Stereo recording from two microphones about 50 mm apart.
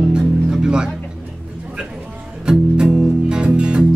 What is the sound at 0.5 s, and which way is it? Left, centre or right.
Music, centre.